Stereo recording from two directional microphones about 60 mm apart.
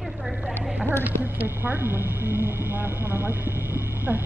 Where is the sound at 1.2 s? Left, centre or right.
Right.